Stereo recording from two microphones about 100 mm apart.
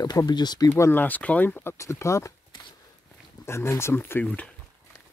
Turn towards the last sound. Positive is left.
turn(degrees=15)  # may be behind; listen again after turning